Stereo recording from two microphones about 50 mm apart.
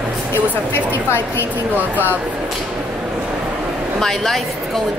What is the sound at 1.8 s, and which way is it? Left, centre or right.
Speech, right.